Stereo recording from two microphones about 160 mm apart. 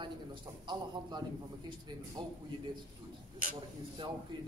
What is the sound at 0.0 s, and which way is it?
A man's voice, 30° right (ahead or behind).